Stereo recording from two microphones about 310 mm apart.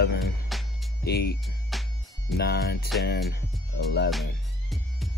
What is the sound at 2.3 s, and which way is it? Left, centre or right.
Music, left.